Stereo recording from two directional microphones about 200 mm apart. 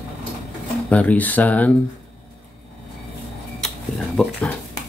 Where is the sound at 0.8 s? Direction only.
5° left (ahead or behind).